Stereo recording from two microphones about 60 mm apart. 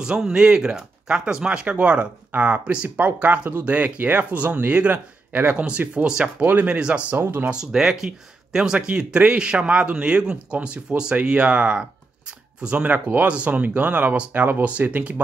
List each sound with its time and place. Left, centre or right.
0.0 s speech: centre
6.4 s speech: right
7.2 s speech: right
7.5 s speech: centre; by 15.2 s right